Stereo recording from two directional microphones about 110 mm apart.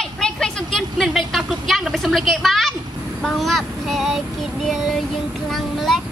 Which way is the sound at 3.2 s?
Centre (ahead or behind).